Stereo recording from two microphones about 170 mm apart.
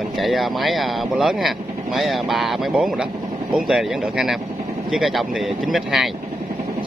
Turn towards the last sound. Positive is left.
turn(degrees=0)  # may be behind; listen again after turning